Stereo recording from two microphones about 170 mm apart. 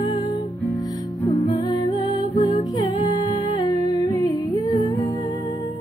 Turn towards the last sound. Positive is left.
turn(degrees=25)  # may be behind; listen again after turning